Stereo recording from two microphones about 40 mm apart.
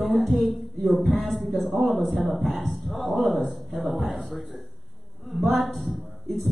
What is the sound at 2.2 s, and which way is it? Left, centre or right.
Speech, right.